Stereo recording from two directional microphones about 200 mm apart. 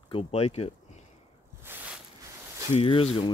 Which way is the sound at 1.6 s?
10° right (ahead or behind).